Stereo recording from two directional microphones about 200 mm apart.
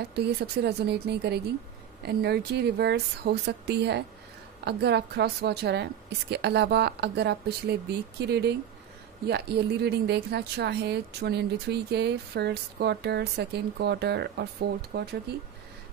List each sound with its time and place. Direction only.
0.1 s speech: 55° right (ahead or behind)